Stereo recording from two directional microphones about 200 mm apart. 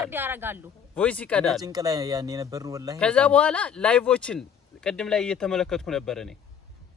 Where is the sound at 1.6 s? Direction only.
20° right (ahead or behind).